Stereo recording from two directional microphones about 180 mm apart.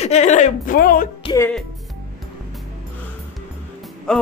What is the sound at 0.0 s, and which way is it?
Speech, 40° left (ahead or behind).